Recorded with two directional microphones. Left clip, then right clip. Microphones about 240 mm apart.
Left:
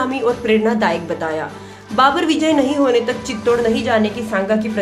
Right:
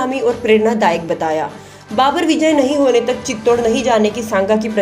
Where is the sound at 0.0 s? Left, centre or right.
Centre.